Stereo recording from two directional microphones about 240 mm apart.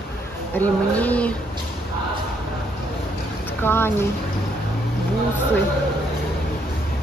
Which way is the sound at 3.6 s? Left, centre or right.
Centre.